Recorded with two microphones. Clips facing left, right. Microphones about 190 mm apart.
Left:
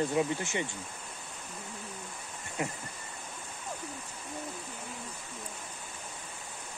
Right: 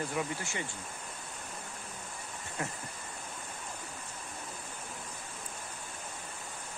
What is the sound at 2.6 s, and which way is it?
Speech, 15° left (ahead or behind).